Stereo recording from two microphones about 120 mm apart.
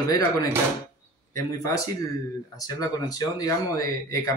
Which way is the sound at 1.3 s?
25° left (ahead or behind).